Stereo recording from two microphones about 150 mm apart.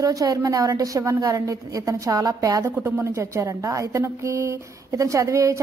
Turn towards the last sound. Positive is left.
turn(degrees=-20)  # may be behind; listen again after turning